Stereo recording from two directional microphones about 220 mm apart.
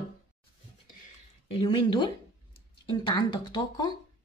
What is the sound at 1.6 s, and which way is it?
Speech, 20° left (ahead or behind).